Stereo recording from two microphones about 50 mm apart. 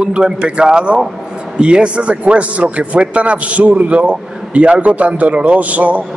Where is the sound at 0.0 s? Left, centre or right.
Centre.